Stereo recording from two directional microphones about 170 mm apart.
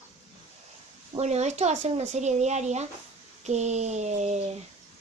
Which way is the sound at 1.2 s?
40° right (ahead or behind).